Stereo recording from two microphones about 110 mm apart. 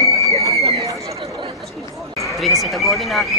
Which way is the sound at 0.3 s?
30° right (ahead or behind).